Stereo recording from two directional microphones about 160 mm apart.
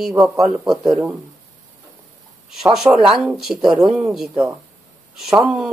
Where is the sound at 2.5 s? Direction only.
Centre (ahead or behind).